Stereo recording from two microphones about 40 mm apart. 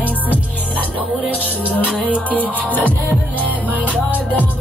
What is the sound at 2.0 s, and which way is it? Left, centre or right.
Music, left.